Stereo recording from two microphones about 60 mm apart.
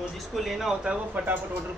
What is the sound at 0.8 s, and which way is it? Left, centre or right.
Speech, right.